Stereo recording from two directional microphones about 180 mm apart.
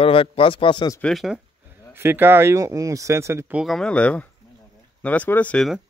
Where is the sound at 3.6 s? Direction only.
5° left (ahead or behind).